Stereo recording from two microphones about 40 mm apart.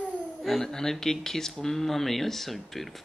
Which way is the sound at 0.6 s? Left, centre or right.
Centre.